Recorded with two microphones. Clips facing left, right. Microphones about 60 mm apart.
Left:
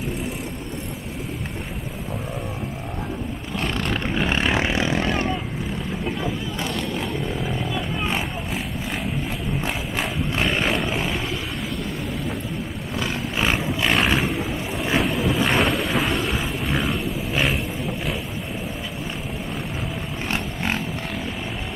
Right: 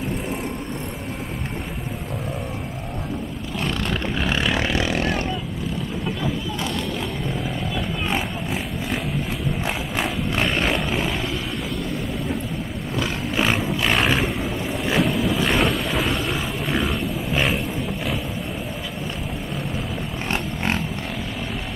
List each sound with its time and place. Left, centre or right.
3.6 s vehicle: centre
4.3 s vehicle: left
7.2 s wild animals: centre
9.7 s a sound: centre
10.4 s roaring cats: centre
13.0 s roaring cats: centre
15.0 s boat: centre
20.3 s a sound: centre